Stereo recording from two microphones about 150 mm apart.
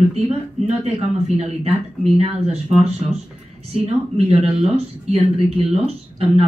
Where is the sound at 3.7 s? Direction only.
45° right (ahead or behind).